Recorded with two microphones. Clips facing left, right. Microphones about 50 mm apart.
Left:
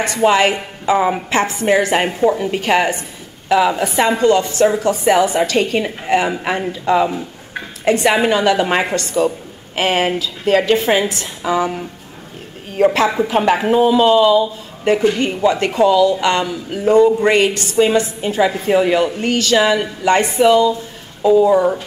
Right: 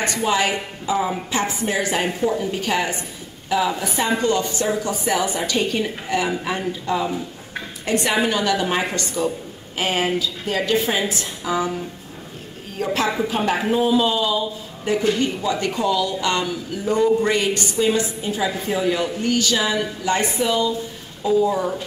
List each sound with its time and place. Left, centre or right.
0.2 s speech: left
2.0 s a woman's voice: left
2.4 s speech: left
7.1 s a sound: left
7.8 s a woman's voice: left